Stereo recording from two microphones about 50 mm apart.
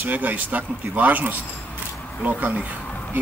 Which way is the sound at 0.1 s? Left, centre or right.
Right.